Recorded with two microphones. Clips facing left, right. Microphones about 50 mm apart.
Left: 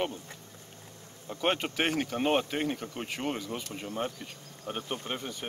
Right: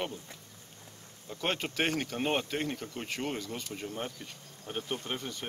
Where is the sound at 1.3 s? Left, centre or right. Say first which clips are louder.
Left 4 dB; centre.